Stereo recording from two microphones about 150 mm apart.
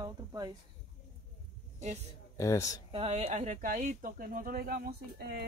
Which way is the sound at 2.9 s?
40° right (ahead or behind).